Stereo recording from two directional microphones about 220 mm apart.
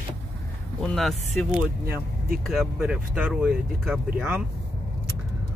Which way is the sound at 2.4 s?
Centre (ahead or behind).